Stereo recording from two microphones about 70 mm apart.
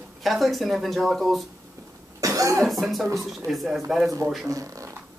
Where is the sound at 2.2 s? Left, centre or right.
Right.